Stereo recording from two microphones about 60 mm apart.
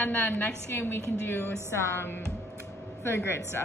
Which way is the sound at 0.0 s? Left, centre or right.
Left.